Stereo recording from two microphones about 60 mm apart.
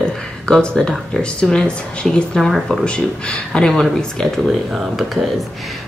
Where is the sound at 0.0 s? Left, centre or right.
Centre.